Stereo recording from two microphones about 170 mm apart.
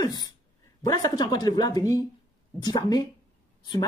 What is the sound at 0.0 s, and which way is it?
Speech, 25° left (ahead or behind).